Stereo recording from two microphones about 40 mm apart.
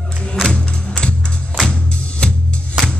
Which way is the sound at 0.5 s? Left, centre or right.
Left.